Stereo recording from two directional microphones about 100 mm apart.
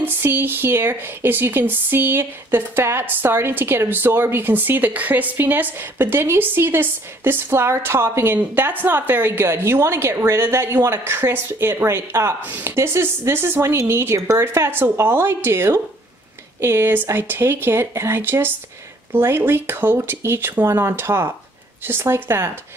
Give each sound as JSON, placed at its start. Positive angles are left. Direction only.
{"t": 0.0, "sound": "speech", "side_deg": -20}